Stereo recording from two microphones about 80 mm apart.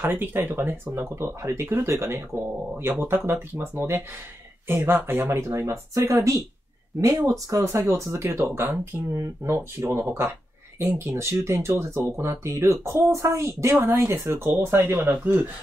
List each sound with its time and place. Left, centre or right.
0.0 s speech: right
4.6 s speech: right